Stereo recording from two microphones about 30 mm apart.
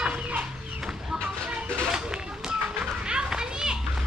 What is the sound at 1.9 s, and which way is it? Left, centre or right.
Children playing, right.